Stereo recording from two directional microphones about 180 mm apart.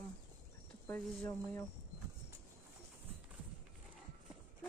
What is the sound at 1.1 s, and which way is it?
Speech, 10° left (ahead or behind).